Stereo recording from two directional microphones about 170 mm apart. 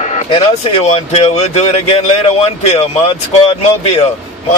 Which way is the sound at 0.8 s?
40° left (ahead or behind).